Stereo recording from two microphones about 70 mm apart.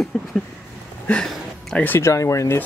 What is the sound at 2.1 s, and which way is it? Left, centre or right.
Speech, left.